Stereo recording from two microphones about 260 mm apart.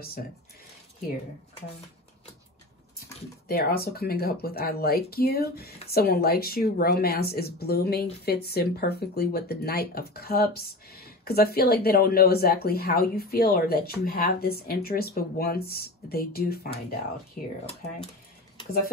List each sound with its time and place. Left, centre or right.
3.4 s speech: left